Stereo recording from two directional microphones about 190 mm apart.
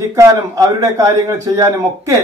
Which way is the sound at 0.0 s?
15° right (ahead or behind).